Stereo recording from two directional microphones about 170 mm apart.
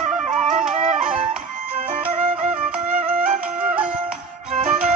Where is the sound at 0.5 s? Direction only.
45° right (ahead or behind).